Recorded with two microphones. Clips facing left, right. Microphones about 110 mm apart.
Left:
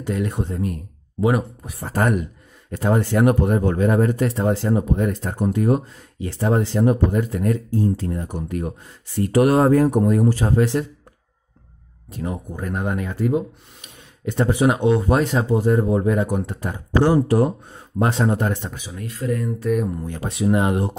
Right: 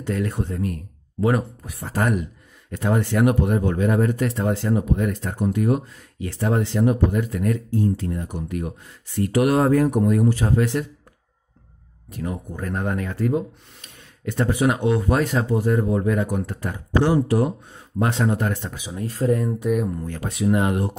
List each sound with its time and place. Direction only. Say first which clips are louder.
0.0 s speech: left 1 dB; 15° left (ahead or behind)
1.8 s speech: left 2 dB; 45° left (ahead or behind)
12.1 s speech: left 1 dB; 25° left (ahead or behind)
12.5 s speech: even; 10° left (ahead or behind)
13.7 s speech: left 2 dB; 20° left (ahead or behind)
17.0 s speech: left 3 dB; 40° left (ahead or behind)
18.9 s speech: right 4 dB; 30° right (ahead or behind)
19.7 s speech: left 2 dB; 5° right (ahead or behind)
20.2 s speech: left 1 dB; 25° left (ahead or behind)